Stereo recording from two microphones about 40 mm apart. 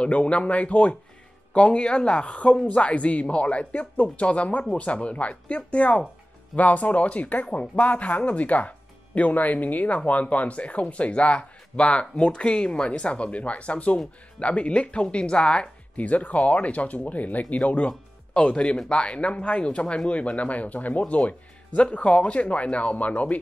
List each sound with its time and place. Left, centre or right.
0.0 s speech: left
16.1 s speech: left